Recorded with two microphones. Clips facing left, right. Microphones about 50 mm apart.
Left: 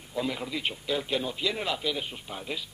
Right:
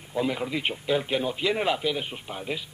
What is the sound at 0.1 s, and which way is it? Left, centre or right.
A man's voice, centre.